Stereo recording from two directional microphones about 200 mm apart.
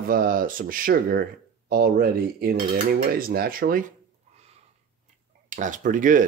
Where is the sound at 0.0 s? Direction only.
45° right (ahead or behind).